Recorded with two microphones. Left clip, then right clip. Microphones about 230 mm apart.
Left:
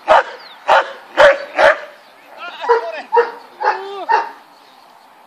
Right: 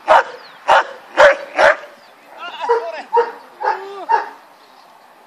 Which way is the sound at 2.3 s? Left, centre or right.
Centre.